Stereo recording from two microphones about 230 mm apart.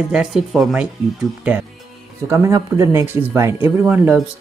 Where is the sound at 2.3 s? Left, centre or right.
Centre.